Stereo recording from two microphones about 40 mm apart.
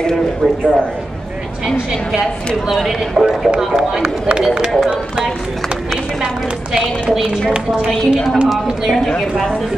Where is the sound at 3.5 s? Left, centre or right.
Right.